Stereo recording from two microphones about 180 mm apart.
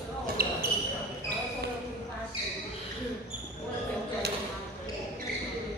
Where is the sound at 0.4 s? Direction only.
55° right (ahead or behind).